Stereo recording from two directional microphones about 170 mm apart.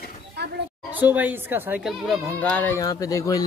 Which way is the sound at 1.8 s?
Centre (ahead or behind).